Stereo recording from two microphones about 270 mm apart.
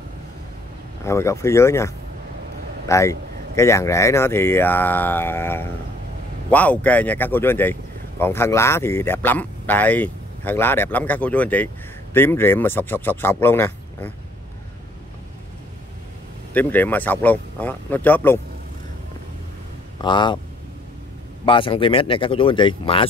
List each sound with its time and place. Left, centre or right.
1.0 s speech: centre
2.9 s speech: centre
16.5 s speech: centre
20.0 s speech: centre
21.5 s speech: centre